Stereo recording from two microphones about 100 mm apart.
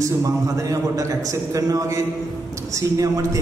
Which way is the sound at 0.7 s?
35° right (ahead or behind).